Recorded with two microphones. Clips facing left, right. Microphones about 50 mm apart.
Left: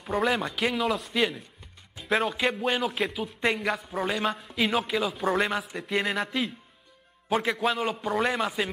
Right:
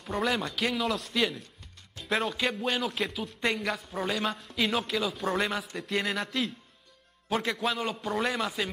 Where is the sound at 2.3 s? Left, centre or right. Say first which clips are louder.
Left 3 dB; centre.